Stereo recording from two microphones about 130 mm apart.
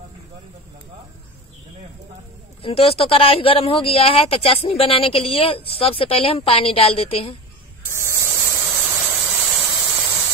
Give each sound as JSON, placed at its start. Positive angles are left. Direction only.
{"t": 2.6, "sound": "speech", "side_deg": 45}
{"t": 7.9, "sound": "static", "side_deg": -20}
{"t": 8.6, "sound": "a sound", "side_deg": -5}